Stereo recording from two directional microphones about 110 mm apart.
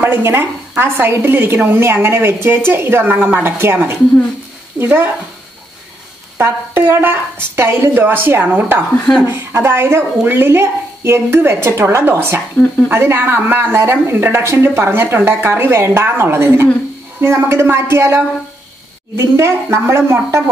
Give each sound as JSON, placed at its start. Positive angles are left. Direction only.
{"t": 0.0, "sound": "a woman's voice", "side_deg": -20}
{"t": 6.3, "sound": "a woman's voice", "side_deg": -20}